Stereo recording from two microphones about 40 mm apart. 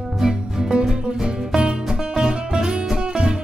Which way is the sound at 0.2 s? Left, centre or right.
Centre.